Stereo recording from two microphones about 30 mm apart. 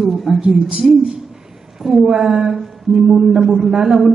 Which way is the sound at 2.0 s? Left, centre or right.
Right.